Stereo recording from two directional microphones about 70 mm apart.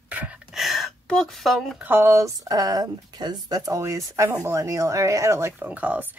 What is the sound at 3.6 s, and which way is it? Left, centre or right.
Speech, right.